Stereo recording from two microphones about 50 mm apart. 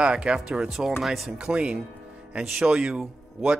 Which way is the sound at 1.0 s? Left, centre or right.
Centre.